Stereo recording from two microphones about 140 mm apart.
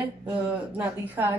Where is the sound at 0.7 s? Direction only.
15° right (ahead or behind).